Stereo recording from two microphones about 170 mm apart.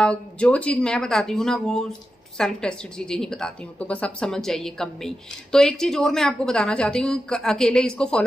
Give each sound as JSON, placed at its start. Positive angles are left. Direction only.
{"t": 0.0, "sound": "speech", "side_deg": 5}